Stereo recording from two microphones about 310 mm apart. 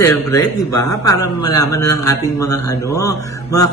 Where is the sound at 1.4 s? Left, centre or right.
Centre.